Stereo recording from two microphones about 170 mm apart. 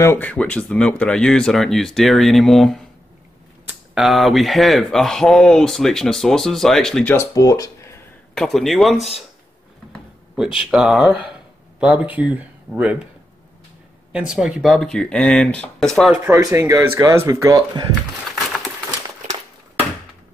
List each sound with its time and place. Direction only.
0.0 s speech: 10° left (ahead or behind)
7.2 s speech: 20° left (ahead or behind)
8.4 s speech: centre (ahead or behind)
10.3 s speech: 5° right (ahead or behind)
14.1 s speech: 5° right (ahead or behind)
16.3 s speech: 20° right (ahead or behind)